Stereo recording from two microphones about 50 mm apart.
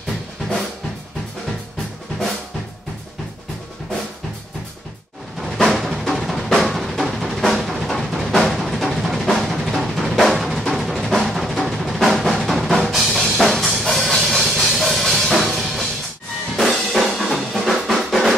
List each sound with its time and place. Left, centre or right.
5.4 s drum: centre
6.0 s music: centre
16.5 s drum: centre